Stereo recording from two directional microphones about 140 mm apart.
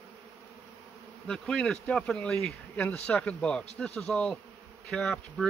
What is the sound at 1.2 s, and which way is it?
Speech, 5° left (ahead or behind).